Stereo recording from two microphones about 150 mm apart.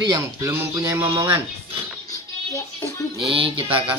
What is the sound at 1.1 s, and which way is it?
Speech, 35° right (ahead or behind).